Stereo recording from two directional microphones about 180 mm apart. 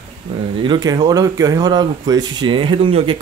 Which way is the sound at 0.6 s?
25° right (ahead or behind).